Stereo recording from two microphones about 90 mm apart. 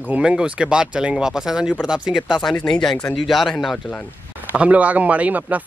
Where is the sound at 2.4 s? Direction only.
5° left (ahead or behind).